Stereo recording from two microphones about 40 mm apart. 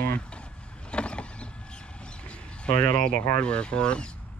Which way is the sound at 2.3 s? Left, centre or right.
Left.